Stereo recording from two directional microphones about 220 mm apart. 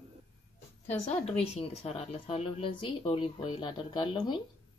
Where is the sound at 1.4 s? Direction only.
30° left (ahead or behind).